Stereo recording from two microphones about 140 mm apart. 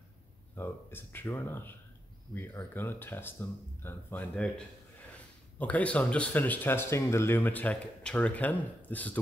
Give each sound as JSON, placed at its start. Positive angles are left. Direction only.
{"t": 0.6, "sound": "speech", "side_deg": 15}
{"t": 5.6, "sound": "speech", "side_deg": 10}